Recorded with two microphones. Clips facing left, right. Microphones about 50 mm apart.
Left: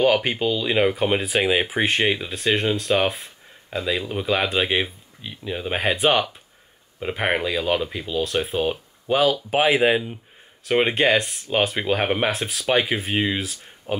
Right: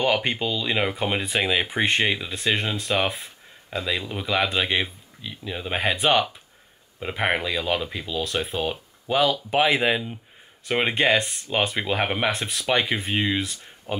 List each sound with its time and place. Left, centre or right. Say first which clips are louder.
0.0 s speech: left 4 dB; centre